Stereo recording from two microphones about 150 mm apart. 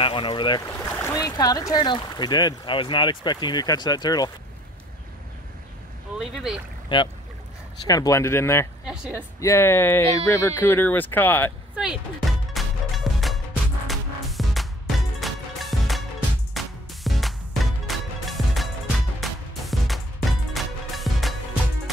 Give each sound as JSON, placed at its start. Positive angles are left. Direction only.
{"t": 0.0, "sound": "speech", "side_deg": 35}
{"t": 0.7, "sound": "speech", "side_deg": 15}
{"t": 6.1, "sound": "speech", "side_deg": 0}
{"t": 7.8, "sound": "speech", "side_deg": 25}
{"t": 8.8, "sound": "speech", "side_deg": -5}
{"t": 9.4, "sound": "speech", "side_deg": 20}
{"t": 11.7, "sound": "music", "side_deg": -5}